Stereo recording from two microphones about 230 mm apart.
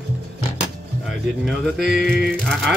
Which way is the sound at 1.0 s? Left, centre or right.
Centre.